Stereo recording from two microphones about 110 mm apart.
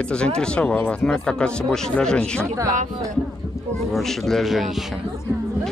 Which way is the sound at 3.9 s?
Centre (ahead or behind).